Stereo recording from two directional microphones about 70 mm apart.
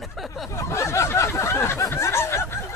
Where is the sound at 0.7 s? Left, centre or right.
Left.